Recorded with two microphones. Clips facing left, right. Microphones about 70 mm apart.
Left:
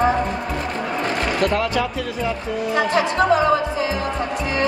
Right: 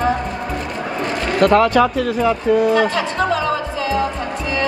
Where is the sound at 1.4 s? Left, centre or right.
Right.